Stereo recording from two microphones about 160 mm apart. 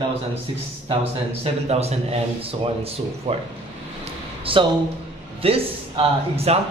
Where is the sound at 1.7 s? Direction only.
40° right (ahead or behind).